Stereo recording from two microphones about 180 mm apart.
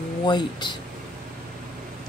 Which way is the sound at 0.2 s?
25° left (ahead or behind).